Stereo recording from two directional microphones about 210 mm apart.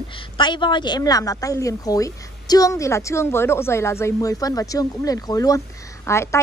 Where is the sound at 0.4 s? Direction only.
20° left (ahead or behind).